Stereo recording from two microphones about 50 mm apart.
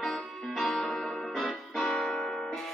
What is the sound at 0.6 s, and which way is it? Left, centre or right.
Music, centre.